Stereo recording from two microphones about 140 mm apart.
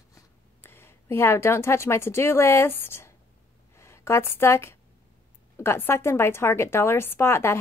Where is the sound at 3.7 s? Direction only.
20° left (ahead or behind).